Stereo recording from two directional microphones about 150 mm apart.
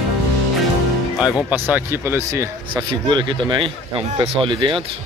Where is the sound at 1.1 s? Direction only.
5° right (ahead or behind).